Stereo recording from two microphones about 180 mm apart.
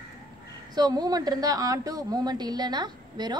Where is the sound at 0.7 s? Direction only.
20° right (ahead or behind).